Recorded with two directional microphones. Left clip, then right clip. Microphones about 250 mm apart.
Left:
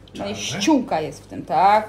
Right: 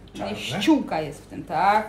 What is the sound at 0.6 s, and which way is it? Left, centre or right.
Speech, centre.